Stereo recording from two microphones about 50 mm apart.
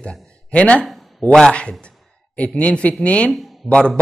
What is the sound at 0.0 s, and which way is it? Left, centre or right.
A man's voice, left.